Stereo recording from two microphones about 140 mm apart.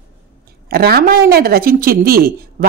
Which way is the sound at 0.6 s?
90° right.